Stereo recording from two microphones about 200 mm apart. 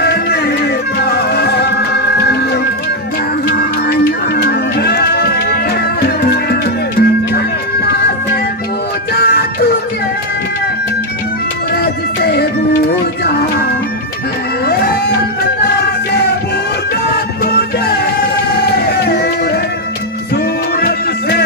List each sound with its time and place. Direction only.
0.0 s music: 50° left (ahead or behind)
3.9 s music: 50° left (ahead or behind)
9.2 s music: 50° left (ahead or behind)
11.7 s music: 50° left (ahead or behind)
17.5 s music: 50° left (ahead or behind)
20.8 s music: 50° left (ahead or behind)